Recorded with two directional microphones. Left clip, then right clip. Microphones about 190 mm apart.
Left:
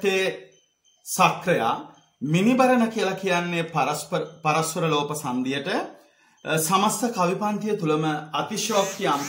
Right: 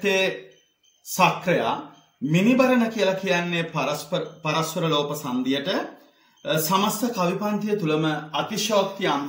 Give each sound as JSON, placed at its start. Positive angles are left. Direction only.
{"t": 0.0, "sound": "a man's voice", "side_deg": 30}